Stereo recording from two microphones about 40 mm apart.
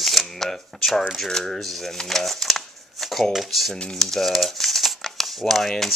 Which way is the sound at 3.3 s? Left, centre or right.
Centre.